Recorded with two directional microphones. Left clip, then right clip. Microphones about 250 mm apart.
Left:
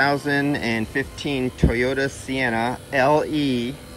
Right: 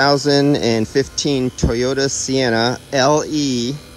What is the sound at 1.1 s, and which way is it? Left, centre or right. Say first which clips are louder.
Speech: right 6 dB; centre.